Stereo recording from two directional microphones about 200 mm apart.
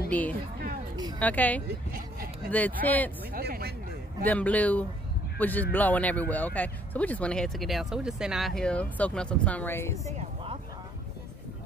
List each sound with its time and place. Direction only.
0.1 s speech: 10° left (ahead or behind)
1.7 s a sound: 50° right (ahead or behind)
2.5 s speech: 10° left (ahead or behind)
3.3 s speech: 50° right (ahead or behind)
4.3 s speech: 5° left (ahead or behind)
10.1 s a sound: 25° right (ahead or behind)